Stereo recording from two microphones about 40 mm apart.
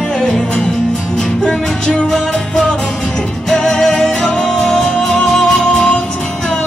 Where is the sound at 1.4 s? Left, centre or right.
Left.